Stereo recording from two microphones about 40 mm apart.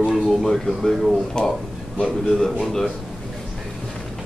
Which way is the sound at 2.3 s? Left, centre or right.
Centre.